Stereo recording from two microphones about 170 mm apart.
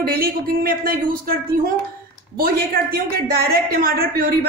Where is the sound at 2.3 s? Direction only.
60° right (ahead or behind).